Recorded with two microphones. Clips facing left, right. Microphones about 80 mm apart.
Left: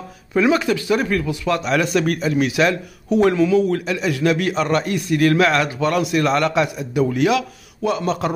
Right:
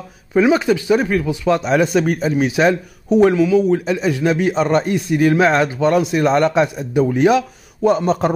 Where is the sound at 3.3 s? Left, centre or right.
Centre.